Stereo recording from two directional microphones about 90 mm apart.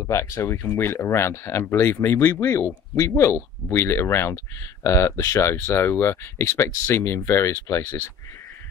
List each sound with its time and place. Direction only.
0.0 s speech: 35° left (ahead or behind)